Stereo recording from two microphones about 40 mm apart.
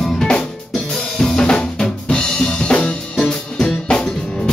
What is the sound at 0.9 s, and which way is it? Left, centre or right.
Drum kit, centre.